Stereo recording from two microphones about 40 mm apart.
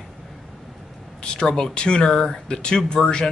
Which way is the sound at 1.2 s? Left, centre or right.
Left.